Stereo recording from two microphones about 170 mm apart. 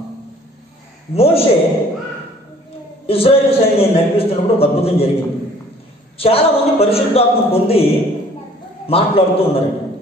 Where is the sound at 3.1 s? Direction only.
35° left (ahead or behind).